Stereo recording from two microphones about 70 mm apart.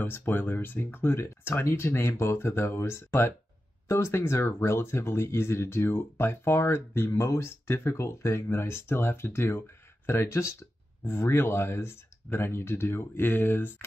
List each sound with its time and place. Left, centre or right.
0.0 s speech: left